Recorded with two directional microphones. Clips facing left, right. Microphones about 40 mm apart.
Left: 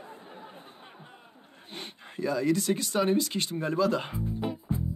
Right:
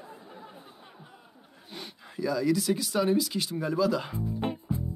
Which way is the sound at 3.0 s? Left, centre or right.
Left.